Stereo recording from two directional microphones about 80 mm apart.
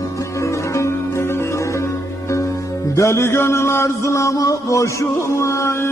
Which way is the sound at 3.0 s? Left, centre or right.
Left.